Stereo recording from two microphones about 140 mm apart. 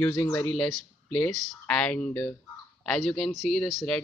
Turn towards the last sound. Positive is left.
turn(degrees=0)  # may be behind; listen again after turning